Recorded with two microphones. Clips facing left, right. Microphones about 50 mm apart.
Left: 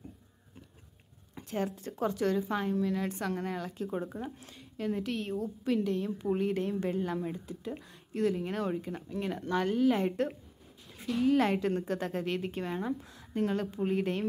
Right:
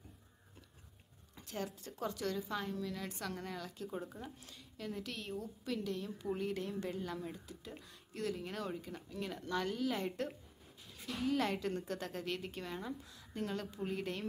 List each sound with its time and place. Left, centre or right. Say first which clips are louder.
1.3 s speech: left 9 dB; left